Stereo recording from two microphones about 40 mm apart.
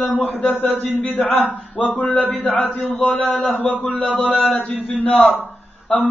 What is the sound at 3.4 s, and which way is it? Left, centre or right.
Mantra, left.